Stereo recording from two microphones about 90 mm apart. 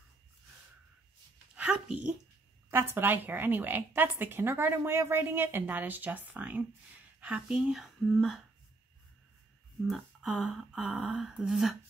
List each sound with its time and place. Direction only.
1.5 s a sound: 10° right (ahead or behind)
2.7 s a woman's voice: 25° right (ahead or behind); by 8.4 s centre (ahead or behind)
9.8 s speech: 5° right (ahead or behind)